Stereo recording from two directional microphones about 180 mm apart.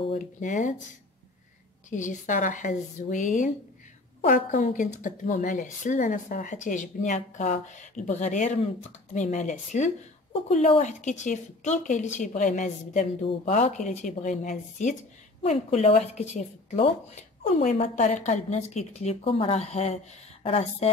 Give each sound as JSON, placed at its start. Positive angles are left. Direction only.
{"t": 0.4, "sound": "speech", "side_deg": 45}
{"t": 1.9, "sound": "speech", "side_deg": 45}